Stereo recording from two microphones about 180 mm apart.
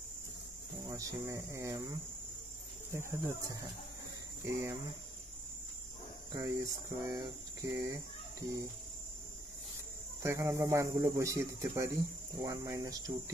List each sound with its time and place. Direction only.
0.8 s cricket: 20° right (ahead or behind)
2.9 s speech: 15° right (ahead or behind)
6.3 s cricket: 20° right (ahead or behind)
10.2 s speech: 15° right (ahead or behind)
12.4 s cricket: 15° right (ahead or behind)